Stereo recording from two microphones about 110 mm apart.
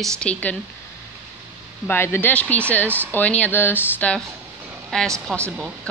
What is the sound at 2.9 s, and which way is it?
Speech, 20° right (ahead or behind).